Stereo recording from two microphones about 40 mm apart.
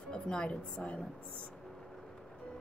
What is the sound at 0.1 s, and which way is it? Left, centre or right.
Speech, left.